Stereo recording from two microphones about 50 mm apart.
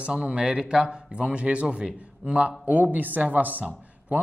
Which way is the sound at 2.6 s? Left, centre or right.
Right.